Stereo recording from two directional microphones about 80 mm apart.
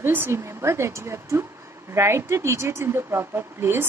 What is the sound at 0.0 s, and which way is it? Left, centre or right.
A woman's voice, right.